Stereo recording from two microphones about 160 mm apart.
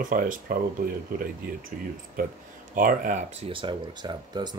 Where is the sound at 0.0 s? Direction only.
60° right (ahead or behind).